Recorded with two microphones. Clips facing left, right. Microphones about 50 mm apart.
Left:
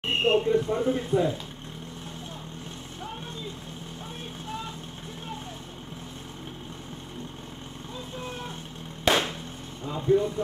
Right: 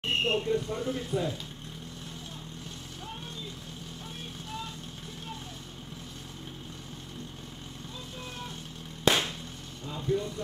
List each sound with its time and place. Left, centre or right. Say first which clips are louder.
0.0 s speech: left 5 dB; centre
9.0 s a sound: left 2 dB; centre
9.8 s speech: left 7 dB; left